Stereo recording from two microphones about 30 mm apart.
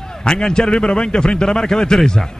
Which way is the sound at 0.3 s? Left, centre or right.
Left.